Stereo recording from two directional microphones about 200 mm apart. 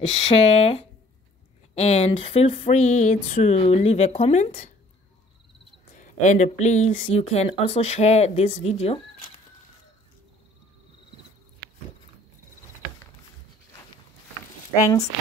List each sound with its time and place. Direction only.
0.0 s speech: 35° left (ahead or behind)
5.9 s speech: 40° left (ahead or behind)